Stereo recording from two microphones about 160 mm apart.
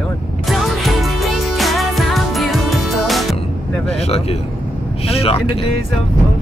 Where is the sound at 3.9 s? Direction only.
40° left (ahead or behind).